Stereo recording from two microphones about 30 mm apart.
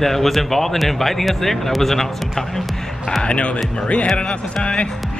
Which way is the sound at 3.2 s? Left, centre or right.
Left.